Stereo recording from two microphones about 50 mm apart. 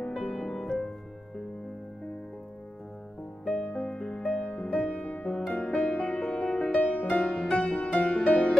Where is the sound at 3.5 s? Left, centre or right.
Left.